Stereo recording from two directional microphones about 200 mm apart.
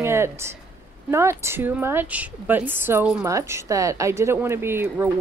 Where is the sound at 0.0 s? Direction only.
10° right (ahead or behind).